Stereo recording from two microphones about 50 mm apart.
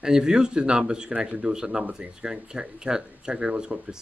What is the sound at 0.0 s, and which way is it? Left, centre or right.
Speech, centre.